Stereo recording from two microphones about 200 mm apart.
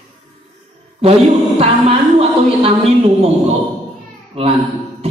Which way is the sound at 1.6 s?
30° right (ahead or behind).